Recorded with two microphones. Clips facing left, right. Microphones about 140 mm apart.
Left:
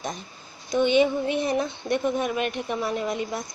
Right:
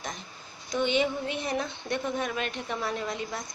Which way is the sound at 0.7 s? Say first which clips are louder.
Left 6 dB; 15° left (ahead or behind).